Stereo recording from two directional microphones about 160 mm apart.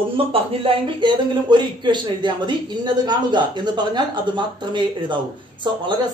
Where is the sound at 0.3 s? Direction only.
35° right (ahead or behind).